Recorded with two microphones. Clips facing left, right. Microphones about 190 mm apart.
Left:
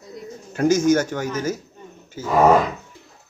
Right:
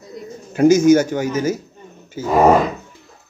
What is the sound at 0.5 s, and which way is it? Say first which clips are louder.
Speech: right 6 dB; 10° right (ahead or behind).